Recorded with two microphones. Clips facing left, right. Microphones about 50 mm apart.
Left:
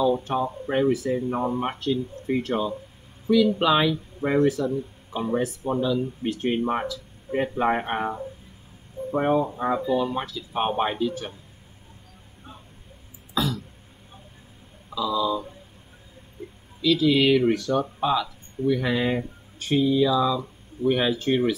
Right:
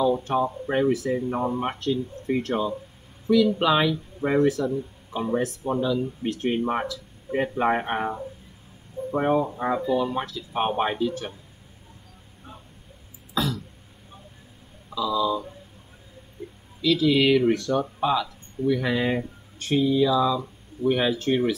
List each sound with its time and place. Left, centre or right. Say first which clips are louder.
0.0 s speech: right 1 dB; centre
13.3 s throat clearing: even; centre
14.9 s speech: even; centre
16.8 s speech: even; centre